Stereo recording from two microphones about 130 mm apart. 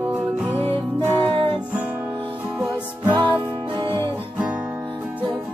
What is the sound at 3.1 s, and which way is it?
Music, 40° right (ahead or behind).